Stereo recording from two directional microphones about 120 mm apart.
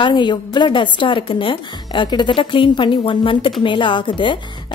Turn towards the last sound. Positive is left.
turn(degrees=40)  # may be behind; listen again after turning